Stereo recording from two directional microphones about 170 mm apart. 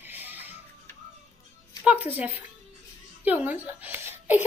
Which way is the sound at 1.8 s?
10° right (ahead or behind).